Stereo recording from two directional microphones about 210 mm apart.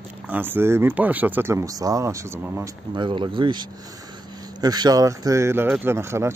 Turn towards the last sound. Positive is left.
turn(degrees=-15)  # may be behind; listen again after turning